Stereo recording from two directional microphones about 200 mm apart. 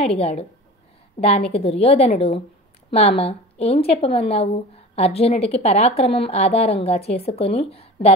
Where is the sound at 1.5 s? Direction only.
30° left (ahead or behind).